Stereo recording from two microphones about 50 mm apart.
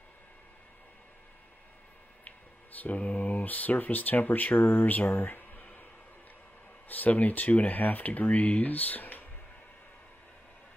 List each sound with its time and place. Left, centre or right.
2.2 s speech: left
6.9 s speech: left